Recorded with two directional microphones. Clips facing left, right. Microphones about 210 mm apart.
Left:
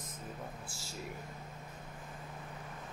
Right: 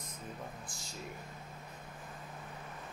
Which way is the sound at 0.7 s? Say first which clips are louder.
Left 1 dB; 5° left (ahead or behind).